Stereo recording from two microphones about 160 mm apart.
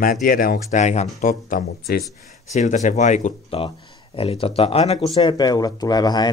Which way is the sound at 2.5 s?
45° left (ahead or behind).